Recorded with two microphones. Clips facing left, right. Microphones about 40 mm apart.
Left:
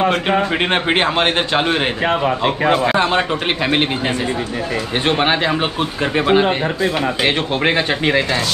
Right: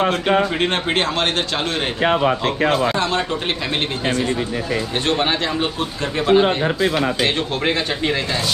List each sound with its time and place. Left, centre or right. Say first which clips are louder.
0.6 s a man's voice: left 3 dB; left
5.0 s a man's voice: left 5 dB; left